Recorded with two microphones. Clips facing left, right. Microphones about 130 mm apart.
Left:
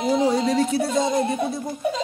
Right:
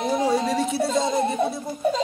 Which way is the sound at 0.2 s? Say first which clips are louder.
Left 2 dB; 5° right (ahead or behind).